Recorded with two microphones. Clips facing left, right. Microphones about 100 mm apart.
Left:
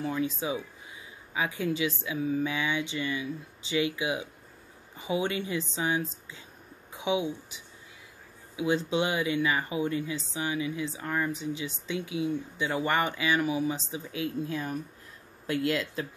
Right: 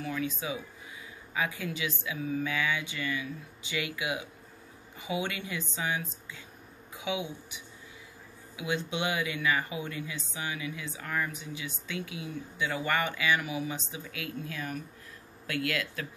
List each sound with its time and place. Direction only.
0.0 s speech: 30° left (ahead or behind)
6.9 s a sound: 25° left (ahead or behind)
8.5 s speech: 35° left (ahead or behind)